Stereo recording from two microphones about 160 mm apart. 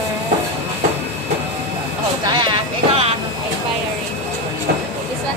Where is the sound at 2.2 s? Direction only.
30° right (ahead or behind).